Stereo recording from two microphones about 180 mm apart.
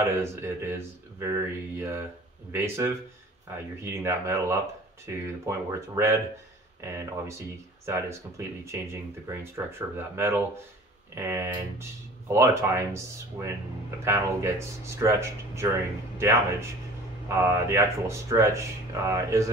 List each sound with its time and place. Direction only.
0.2 s speech: 15° right (ahead or behind)